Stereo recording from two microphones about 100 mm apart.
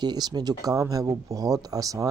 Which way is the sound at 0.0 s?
45° right (ahead or behind).